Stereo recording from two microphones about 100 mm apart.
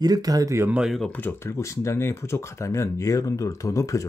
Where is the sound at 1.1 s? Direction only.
20° left (ahead or behind).